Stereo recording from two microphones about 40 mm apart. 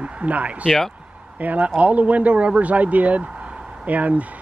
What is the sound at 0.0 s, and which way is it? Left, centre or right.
A man's voice, right.